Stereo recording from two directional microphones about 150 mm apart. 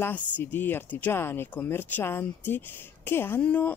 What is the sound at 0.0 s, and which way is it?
Speech, 15° left (ahead or behind).